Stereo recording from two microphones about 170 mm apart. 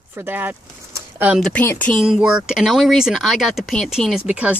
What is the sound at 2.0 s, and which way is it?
Speech, 5° right (ahead or behind).